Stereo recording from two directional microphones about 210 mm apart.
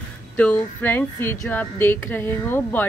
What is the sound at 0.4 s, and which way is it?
A woman's voice, 10° left (ahead or behind).